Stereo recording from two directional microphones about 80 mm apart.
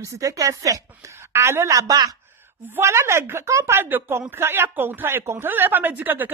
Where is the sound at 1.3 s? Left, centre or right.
Right.